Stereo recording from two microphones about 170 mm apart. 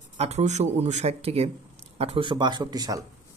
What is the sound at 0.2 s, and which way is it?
A man's voice, 40° right (ahead or behind).